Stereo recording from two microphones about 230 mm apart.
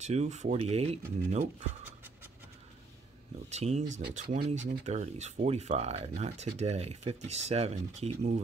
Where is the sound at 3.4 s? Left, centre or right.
Right.